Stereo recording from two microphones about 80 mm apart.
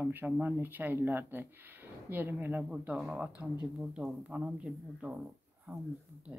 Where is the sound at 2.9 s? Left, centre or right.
Centre.